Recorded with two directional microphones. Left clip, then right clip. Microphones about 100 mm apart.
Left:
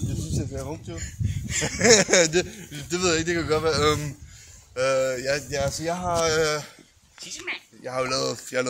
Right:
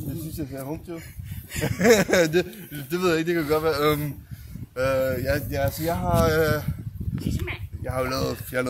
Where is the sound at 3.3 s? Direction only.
5° left (ahead or behind).